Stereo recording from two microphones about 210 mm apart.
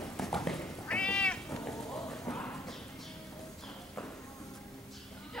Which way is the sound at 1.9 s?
Centre (ahead or behind).